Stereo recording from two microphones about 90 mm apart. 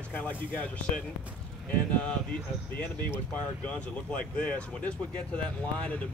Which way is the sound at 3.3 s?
15° left (ahead or behind).